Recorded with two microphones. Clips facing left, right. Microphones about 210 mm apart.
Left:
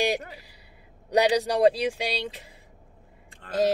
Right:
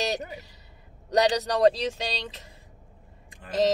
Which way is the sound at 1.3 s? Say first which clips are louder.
Left 1 dB; 10° left (ahead or behind).